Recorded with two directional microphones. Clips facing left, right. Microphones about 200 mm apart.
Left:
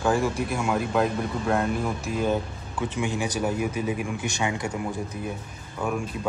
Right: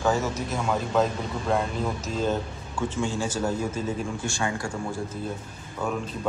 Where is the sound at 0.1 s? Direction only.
10° left (ahead or behind).